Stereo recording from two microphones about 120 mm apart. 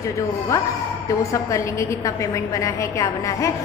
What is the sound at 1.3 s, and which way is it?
A woman's voice, 25° left (ahead or behind).